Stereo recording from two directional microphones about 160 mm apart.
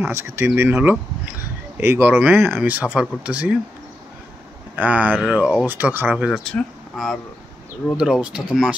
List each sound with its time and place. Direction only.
0.0 s speech: 15° right (ahead or behind)
4.7 s speech: 10° right (ahead or behind)